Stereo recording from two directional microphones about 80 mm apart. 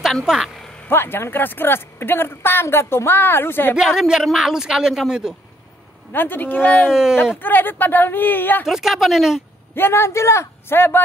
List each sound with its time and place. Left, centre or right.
0.0 s speech: centre
0.8 s a woman's voice: left
3.7 s a woman's voice: centre
6.1 s a woman's voice: left
6.9 s a woman's voice: centre
7.3 s a woman's voice: left
8.6 s a woman's voice: centre
9.8 s a woman's voice: left